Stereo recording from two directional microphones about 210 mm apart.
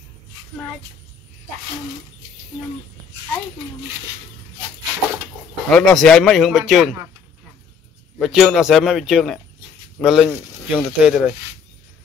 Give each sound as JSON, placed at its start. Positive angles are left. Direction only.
{"t": 5.7, "sound": "speech", "side_deg": 5}
{"t": 8.2, "sound": "speech", "side_deg": 0}